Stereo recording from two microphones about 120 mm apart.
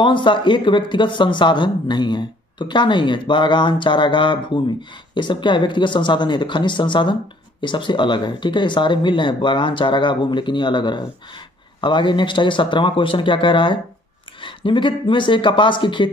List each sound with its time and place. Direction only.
0.0 s speech: 40° left (ahead or behind)